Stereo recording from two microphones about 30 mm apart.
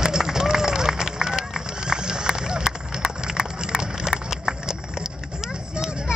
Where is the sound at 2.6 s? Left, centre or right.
Centre.